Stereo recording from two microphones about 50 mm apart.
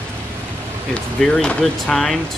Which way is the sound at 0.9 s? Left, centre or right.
Centre.